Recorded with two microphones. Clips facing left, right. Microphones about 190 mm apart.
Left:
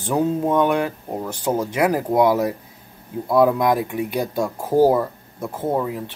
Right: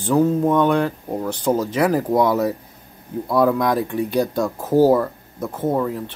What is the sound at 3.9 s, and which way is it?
Speech, 10° left (ahead or behind).